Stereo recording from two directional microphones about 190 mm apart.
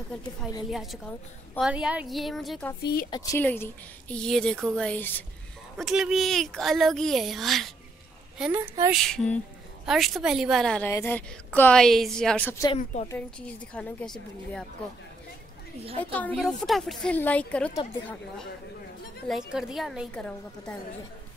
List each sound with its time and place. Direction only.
0.7 s speech: centre (ahead or behind)
2.8 s a woman's voice: 55° left (ahead or behind)
3.1 s a woman's voice: 20° left (ahead or behind); by 8.9 s 15° right (ahead or behind)
9.1 s a woman's voice: 5° left (ahead or behind)
12.7 s a woman's voice: 35° left (ahead or behind)
13.1 s a woman's voice: 5° left (ahead or behind)
16.0 s a woman's voice: 10° left (ahead or behind)
19.2 s speech: centre (ahead or behind)